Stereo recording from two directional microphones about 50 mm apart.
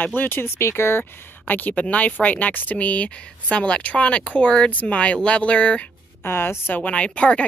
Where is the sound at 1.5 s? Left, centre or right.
Left.